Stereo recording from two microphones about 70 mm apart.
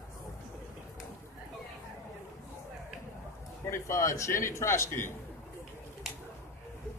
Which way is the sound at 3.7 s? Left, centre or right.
Left.